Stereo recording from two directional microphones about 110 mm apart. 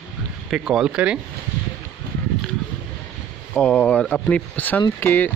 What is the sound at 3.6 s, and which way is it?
Speech, 15° left (ahead or behind).